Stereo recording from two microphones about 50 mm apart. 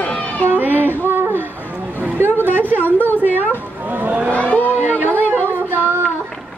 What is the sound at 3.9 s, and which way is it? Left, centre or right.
Vehicle, right.